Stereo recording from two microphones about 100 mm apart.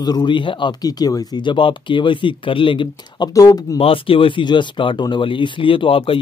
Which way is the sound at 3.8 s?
65° left (ahead or behind).